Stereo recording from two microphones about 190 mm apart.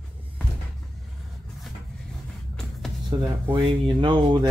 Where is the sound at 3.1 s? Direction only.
25° right (ahead or behind).